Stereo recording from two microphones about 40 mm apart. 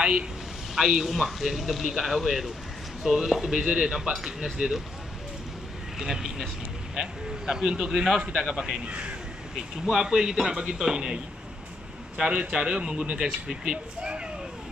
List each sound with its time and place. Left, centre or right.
0.0 s speech: right
0.7 s speech: centre
5.9 s speech: centre
8.3 s speech: centre
8.8 s speech: right
10.0 s speech: centre
12.2 s speech: right